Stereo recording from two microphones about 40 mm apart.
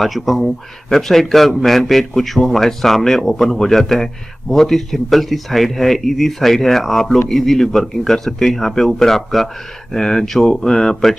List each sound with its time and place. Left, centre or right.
0.0 s a man's voice: centre